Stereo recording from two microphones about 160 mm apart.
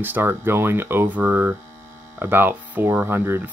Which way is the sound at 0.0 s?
15° right (ahead or behind).